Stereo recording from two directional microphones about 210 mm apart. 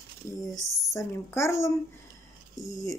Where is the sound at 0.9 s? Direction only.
15° left (ahead or behind).